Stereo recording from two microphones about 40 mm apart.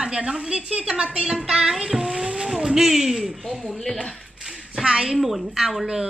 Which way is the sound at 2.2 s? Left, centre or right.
Centre.